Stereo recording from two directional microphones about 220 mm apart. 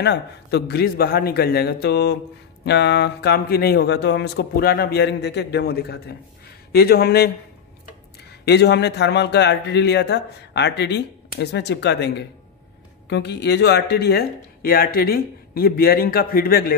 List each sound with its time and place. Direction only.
0.0 s speech: 50° left (ahead or behind)
8.5 s speech: 50° left (ahead or behind)